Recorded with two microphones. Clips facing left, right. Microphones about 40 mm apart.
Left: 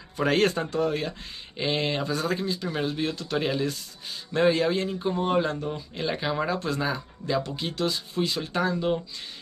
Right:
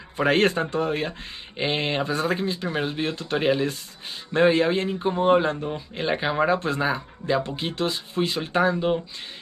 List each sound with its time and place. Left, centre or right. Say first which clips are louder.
0.2 s speech: right 3 dB; right